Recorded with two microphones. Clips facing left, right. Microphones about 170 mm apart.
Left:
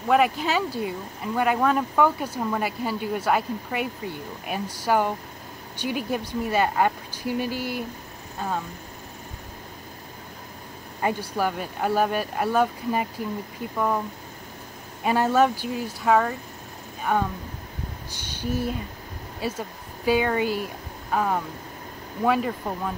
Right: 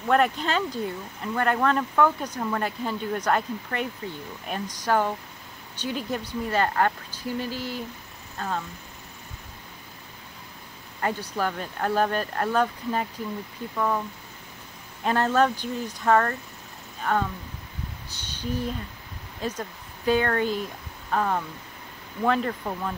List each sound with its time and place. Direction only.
0.1 s speech: 5° left (ahead or behind)
11.0 s speech: 15° left (ahead or behind)
15.0 s speech: 10° left (ahead or behind)
18.1 s a sound: 10° left (ahead or behind)
19.4 s speech: 10° left (ahead or behind)